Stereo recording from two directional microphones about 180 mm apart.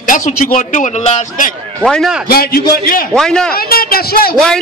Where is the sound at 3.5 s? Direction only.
55° left (ahead or behind).